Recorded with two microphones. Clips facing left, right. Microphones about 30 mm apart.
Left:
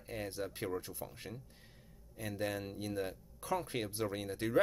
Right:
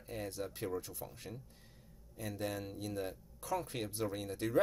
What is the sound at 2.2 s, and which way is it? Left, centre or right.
Speech, centre.